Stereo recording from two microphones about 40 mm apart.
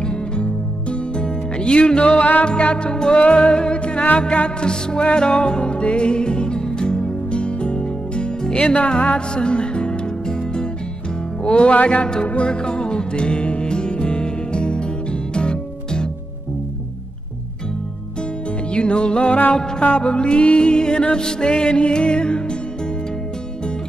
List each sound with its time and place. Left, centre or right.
0.0 s music: left
2.1 s music: left
2.4 s music: left
3.2 s music: left
12.4 s music: left
18.7 s music: left